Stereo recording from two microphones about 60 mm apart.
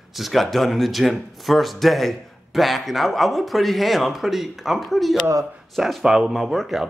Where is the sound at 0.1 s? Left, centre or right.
Centre.